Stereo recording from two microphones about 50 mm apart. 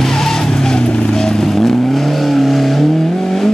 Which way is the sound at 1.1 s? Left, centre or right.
Centre.